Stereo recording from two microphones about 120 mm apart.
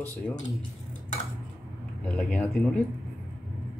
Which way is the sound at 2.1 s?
10° left (ahead or behind).